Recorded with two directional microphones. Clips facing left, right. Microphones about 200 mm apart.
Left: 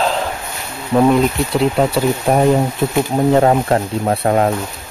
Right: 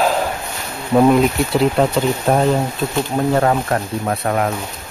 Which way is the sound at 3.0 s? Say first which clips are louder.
Left 4 dB; 20° left (ahead or behind).